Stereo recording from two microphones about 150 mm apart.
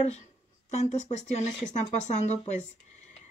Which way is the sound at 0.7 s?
50° left (ahead or behind).